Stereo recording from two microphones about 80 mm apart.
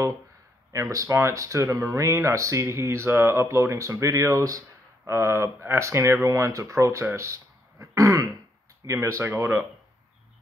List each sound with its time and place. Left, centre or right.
0.7 s speech: right
7.8 s throat clearing: right
8.8 s speech: right